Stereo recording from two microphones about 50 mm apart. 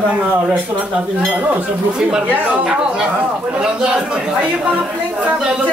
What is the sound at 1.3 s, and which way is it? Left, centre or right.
Speech, right.